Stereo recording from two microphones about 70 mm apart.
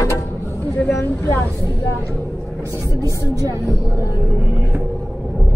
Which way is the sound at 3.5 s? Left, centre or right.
Right.